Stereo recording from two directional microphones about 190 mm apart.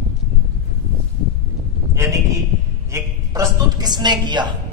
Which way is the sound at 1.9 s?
15° right (ahead or behind).